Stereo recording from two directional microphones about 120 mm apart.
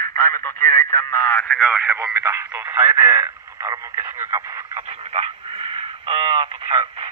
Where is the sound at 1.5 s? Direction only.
10° right (ahead or behind).